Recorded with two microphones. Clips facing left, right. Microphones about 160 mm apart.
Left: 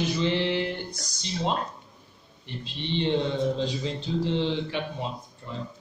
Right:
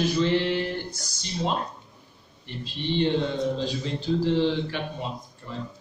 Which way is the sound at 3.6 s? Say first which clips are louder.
Even; 20° left (ahead or behind).